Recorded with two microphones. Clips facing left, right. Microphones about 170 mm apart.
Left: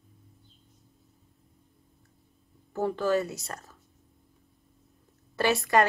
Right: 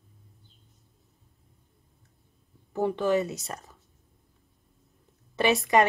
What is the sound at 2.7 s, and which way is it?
Speech, 20° right (ahead or behind).